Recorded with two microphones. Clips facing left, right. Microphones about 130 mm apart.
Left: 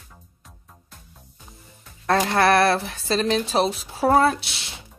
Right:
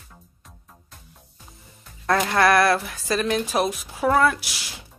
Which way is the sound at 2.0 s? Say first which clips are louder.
Left 1 dB; 35° left (ahead or behind).